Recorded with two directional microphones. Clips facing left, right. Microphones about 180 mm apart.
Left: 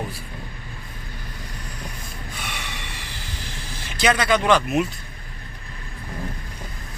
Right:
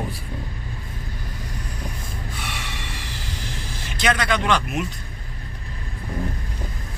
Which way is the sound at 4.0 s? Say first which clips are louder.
Left 3 dB; 5° left (ahead or behind).